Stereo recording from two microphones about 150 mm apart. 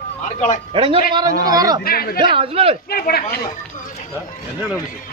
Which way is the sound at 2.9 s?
90° left.